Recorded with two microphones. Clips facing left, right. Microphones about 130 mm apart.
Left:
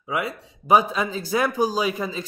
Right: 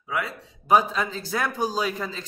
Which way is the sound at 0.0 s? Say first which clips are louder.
Left 3 dB; 15° left (ahead or behind).